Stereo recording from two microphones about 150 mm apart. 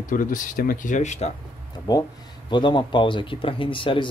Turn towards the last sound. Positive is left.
turn(degrees=35)  # may be behind; listen again after turning